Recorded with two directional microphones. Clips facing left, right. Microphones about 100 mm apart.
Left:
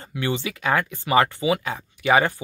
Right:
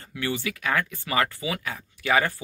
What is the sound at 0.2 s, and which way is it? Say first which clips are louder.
Speech: left 3 dB; 25° left (ahead or behind).